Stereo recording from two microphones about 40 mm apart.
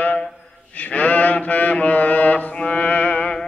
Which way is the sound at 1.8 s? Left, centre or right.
Left.